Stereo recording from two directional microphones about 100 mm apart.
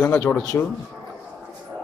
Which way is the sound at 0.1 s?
20° left (ahead or behind).